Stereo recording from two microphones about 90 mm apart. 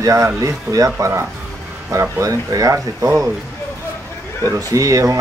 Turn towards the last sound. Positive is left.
turn(degrees=-40)  # may be behind; listen again after turning